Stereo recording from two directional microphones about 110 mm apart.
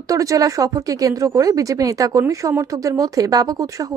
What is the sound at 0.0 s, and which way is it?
A woman's voice, 30° right (ahead or behind).